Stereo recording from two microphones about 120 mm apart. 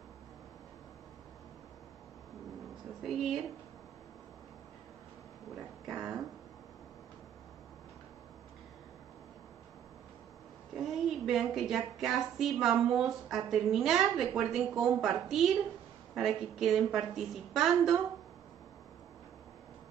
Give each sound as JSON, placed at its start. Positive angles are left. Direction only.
{"t": 3.0, "sound": "a woman's voice", "side_deg": 0}
{"t": 5.9, "sound": "a sound", "side_deg": -5}
{"t": 10.8, "sound": "a woman's voice", "side_deg": 0}